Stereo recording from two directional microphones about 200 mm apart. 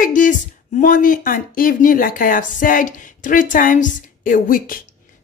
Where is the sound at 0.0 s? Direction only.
40° left (ahead or behind).